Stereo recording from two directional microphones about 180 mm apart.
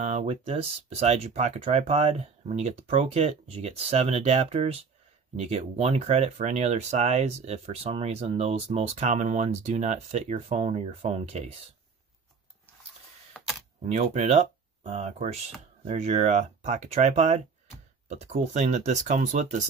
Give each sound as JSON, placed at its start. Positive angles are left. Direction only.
{"t": 0.0, "sound": "speech", "side_deg": -40}
{"t": 13.8, "sound": "speech", "side_deg": -40}